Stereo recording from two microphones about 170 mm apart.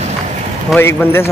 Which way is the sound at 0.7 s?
15° left (ahead or behind).